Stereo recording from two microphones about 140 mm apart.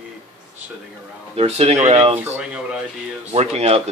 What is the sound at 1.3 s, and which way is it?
Speech, 45° right (ahead or behind).